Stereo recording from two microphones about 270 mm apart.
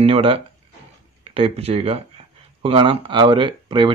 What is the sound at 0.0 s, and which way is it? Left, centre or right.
Speech, right.